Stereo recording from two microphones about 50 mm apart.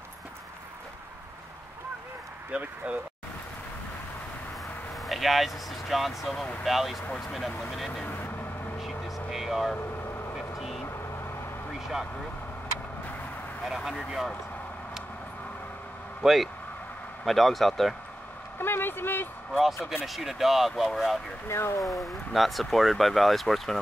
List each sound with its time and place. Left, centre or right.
2.5 s speech: right
5.0 s speech: centre
13.7 s speech: centre
16.2 s speech: centre
18.6 s speech: left
19.9 s speech: centre
21.5 s speech: left
21.8 s speech: centre